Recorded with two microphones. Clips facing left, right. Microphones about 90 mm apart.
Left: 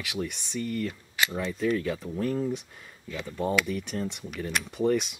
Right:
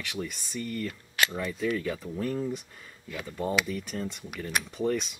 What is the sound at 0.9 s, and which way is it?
Speech, 15° left (ahead or behind).